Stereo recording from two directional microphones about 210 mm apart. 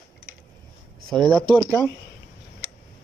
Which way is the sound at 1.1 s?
5° left (ahead or behind).